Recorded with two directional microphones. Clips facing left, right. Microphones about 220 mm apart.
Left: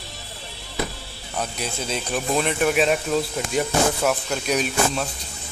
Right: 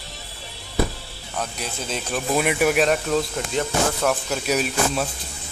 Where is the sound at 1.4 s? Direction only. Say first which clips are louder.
Left 2 dB; centre (ahead or behind).